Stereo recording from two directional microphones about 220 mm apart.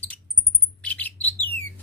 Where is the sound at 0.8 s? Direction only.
5° left (ahead or behind).